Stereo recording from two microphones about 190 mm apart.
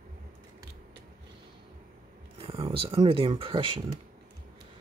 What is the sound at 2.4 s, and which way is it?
Speech, 30° right (ahead or behind).